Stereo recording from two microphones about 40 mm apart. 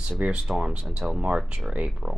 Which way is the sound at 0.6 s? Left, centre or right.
Right.